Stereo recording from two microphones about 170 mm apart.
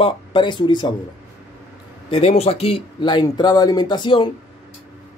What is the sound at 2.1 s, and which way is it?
Speech, 40° left (ahead or behind).